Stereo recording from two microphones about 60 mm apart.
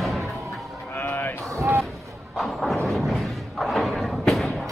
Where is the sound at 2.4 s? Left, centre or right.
Centre.